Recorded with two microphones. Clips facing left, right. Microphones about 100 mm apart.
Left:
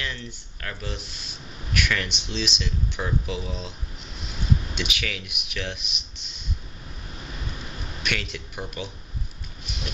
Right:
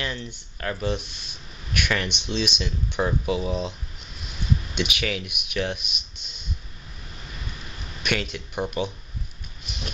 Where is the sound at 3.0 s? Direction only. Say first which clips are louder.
Right 6 dB; 35° right (ahead or behind).